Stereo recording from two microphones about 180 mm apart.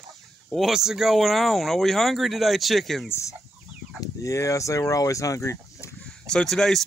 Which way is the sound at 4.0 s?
15° left (ahead or behind).